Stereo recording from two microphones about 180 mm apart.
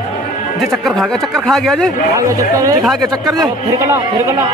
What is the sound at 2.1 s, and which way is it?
Speech, 20° right (ahead or behind).